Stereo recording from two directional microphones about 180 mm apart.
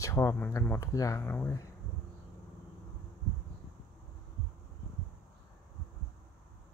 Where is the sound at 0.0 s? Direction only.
15° left (ahead or behind).